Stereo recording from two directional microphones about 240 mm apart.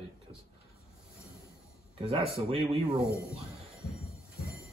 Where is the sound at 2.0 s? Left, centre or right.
Right.